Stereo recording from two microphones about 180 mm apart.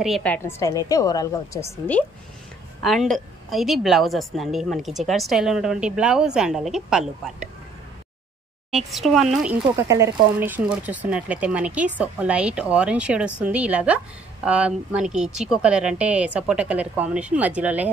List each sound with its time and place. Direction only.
0.0 s a woman's voice: 5° left (ahead or behind)
2.8 s a woman's voice: centre (ahead or behind)
8.7 s a woman's voice: centre (ahead or behind)
9.8 s a woman's voice: 15° right (ahead or behind)